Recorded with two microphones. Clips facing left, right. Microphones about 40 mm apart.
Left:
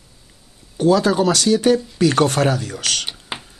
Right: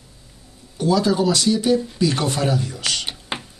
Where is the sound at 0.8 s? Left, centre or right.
Left.